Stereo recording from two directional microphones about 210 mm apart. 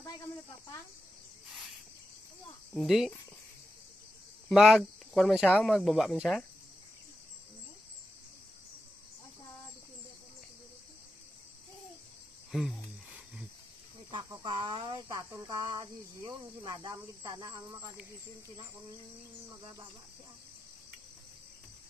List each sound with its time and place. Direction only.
2.7 s speech: centre (ahead or behind)
4.5 s speech: centre (ahead or behind)
12.4 s a sound: centre (ahead or behind)
14.1 s cricket: 20° right (ahead or behind)